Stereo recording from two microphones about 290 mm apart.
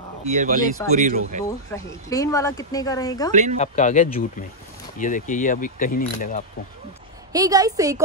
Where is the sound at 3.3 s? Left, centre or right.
Right.